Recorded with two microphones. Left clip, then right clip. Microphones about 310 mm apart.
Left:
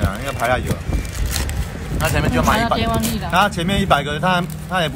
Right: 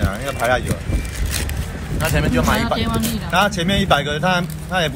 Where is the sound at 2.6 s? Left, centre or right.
Left.